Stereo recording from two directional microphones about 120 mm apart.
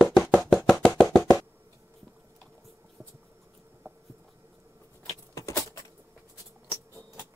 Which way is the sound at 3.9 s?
20° right (ahead or behind).